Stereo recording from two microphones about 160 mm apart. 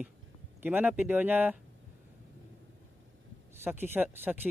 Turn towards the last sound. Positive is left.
turn(degrees=-10)  # may be behind; listen again after turning